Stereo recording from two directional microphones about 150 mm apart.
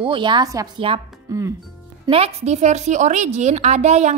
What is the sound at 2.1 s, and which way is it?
A woman's voice, 45° right (ahead or behind).